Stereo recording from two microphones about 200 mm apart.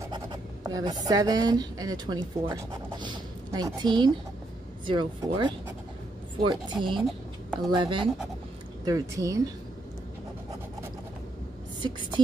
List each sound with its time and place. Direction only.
0.0 s speech: 20° right (ahead or behind)
11.8 s speech: 25° right (ahead or behind)